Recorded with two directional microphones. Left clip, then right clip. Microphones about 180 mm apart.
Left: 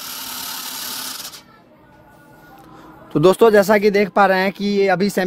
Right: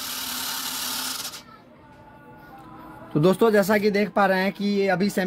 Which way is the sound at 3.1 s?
65° left (ahead or behind).